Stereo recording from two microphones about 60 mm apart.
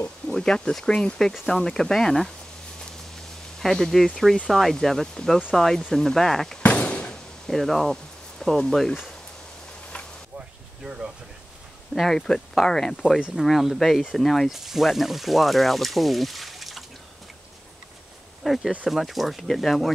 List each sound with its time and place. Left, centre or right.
0.3 s speech: centre
3.5 s speech: centre
6.6 s a sound: left
7.4 s speech: centre
11.9 s speech: centre
18.4 s insect: centre
18.9 s speech: centre